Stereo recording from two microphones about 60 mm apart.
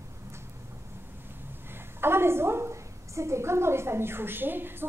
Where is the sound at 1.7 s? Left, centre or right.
Right.